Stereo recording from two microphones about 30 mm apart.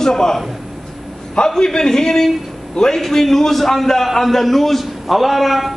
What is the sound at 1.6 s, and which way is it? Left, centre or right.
A man's voice, centre.